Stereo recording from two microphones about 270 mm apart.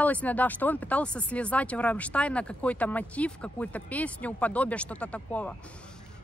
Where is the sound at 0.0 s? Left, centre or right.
Centre.